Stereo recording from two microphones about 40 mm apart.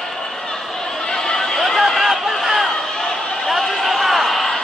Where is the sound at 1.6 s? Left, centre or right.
Centre.